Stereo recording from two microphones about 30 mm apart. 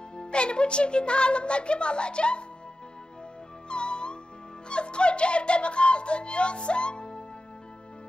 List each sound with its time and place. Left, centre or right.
0.1 s a woman's voice: left
3.6 s music: left
4.6 s speech: left